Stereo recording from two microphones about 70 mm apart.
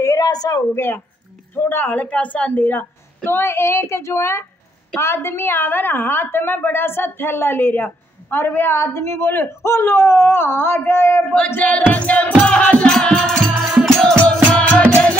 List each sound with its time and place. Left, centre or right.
0.2 s speech: left
0.6 s a woman's voice: left
2.0 s music: centre
3.3 s a woman's voice: left
11.3 s music: left